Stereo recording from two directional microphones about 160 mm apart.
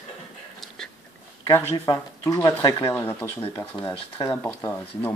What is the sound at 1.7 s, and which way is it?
Speech, 25° left (ahead or behind).